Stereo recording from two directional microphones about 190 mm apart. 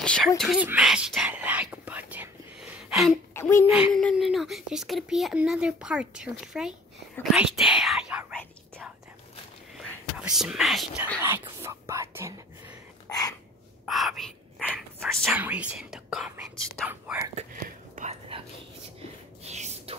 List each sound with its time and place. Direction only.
0.0 s speech: 5° left (ahead or behind)
3.3 s a child's voice: 15° left (ahead or behind)
3.7 s speech: centre (ahead or behind)
10.1 s speech: 5° right (ahead or behind)
11.1 s speech: 10° right (ahead or behind)
13.1 s a sound: 20° left (ahead or behind)
13.8 s speech: centre (ahead or behind)
15.2 s speech: 10° right (ahead or behind)
17.4 s speech: 40° right (ahead or behind)
19.4 s a sound: 35° right (ahead or behind)